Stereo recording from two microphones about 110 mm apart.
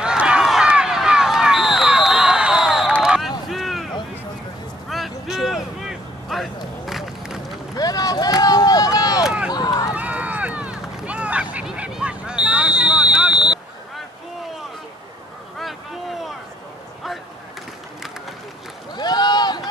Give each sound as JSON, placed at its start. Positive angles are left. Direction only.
{"t": 0.0, "sound": "run", "side_deg": -10}
{"t": 3.0, "sound": "a sound", "side_deg": -5}
{"t": 4.8, "sound": "vehicle", "side_deg": 0}
{"t": 7.7, "sound": "vehicle", "side_deg": 35}
{"t": 9.2, "sound": "a sound", "side_deg": -10}
{"t": 9.5, "sound": "run", "side_deg": 35}
{"t": 9.9, "sound": "run", "side_deg": -15}
{"t": 15.6, "sound": "vehicle", "side_deg": 0}
{"t": 18.9, "sound": "a sound", "side_deg": 40}